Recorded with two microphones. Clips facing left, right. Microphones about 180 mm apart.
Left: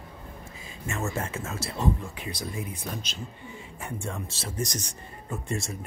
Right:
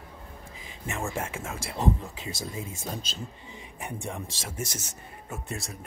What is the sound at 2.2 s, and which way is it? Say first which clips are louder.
Speech: left 1 dB; 25° right (ahead or behind).